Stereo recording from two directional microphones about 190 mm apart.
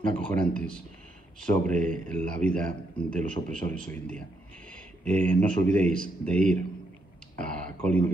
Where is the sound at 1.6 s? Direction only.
45° right (ahead or behind).